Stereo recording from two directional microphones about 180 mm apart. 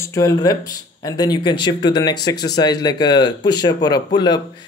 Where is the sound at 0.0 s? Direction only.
15° left (ahead or behind).